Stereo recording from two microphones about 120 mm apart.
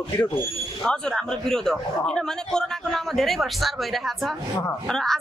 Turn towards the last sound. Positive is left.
turn(degrees=5)  # may be behind; listen again after turning